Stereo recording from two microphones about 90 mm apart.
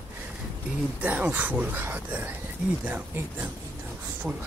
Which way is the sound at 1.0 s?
20° right (ahead or behind).